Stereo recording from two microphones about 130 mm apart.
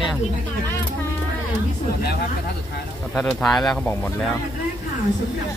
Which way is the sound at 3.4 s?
5° left (ahead or behind).